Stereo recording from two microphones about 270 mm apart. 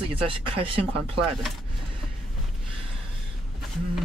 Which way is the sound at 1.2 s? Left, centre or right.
Centre.